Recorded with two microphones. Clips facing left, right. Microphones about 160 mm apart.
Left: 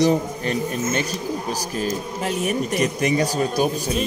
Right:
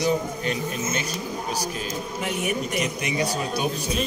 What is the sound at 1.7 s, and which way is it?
A man's voice, 40° left (ahead or behind).